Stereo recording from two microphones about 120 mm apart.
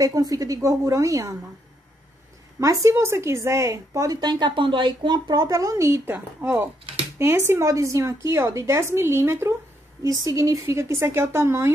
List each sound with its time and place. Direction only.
0.0 s a woman's voice: 30° right (ahead or behind)
2.6 s a woman's voice: 25° right (ahead or behind)